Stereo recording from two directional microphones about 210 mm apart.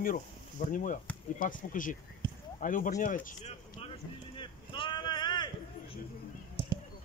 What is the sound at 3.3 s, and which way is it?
Vehicle, 35° left (ahead or behind).